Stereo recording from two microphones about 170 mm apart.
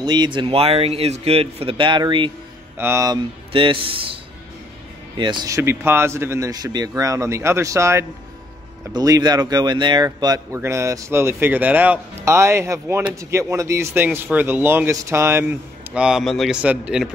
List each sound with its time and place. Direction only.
0.0 s speech: 25° right (ahead or behind)
2.8 s speech: 15° right (ahead or behind)
3.5 s speech: 30° right (ahead or behind)
5.1 s speech: 25° right (ahead or behind)
15.9 s a man's voice: 5° right (ahead or behind)